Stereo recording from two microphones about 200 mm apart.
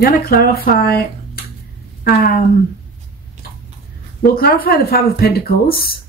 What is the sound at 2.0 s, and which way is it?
Speech, 45° left (ahead or behind).